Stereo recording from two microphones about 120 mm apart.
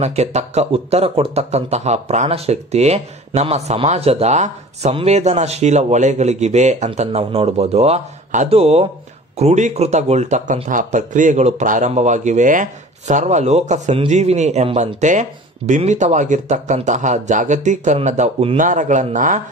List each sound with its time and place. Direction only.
0.0 s speech: 70° right (ahead or behind)
8.5 s speech: 55° right (ahead or behind)
15.0 s speech: 85° right
17.9 s speech: 75° right (ahead or behind)
18.6 s speech: 90° right